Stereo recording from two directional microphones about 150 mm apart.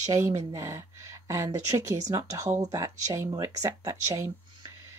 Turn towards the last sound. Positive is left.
turn(degrees=-20)  # may be behind; listen again after turning